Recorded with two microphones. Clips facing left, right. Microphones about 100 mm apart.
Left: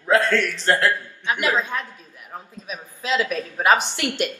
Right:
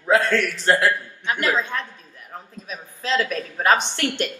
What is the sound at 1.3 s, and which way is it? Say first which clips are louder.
A woman's voice: even; 15° left (ahead or behind).